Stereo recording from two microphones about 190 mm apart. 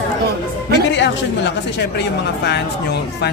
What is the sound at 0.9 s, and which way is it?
A woman's voice, 65° left (ahead or behind).